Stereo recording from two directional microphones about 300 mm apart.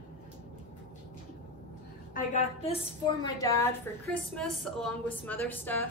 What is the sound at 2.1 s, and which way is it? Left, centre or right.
A woman's voice, left.